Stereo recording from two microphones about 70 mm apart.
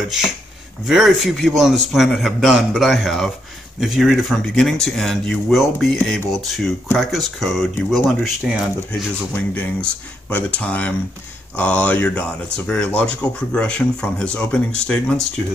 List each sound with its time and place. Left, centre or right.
0.8 s a man's voice: centre
9.3 s speech: centre